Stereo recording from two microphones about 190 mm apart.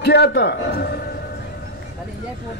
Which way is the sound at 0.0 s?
60° left (ahead or behind).